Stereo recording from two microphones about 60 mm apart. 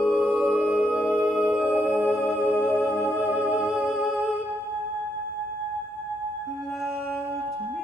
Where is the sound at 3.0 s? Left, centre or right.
Right.